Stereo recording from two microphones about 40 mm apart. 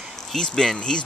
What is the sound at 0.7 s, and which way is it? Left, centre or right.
Speech, left.